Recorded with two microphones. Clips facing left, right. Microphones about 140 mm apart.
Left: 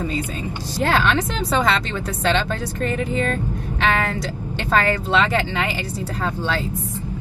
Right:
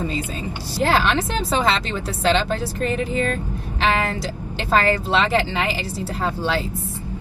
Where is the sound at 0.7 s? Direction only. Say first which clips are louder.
Even; 10° right (ahead or behind).